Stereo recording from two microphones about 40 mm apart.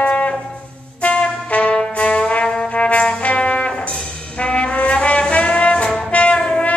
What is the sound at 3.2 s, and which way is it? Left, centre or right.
Music, left.